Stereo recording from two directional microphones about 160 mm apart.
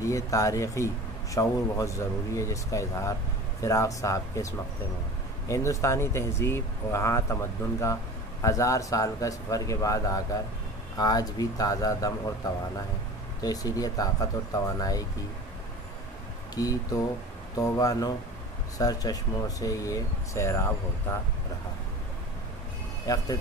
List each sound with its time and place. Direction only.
0.0 s speech: 20° left (ahead or behind)
16.6 s speech: 25° left (ahead or behind)
23.0 s speech: 20° left (ahead or behind)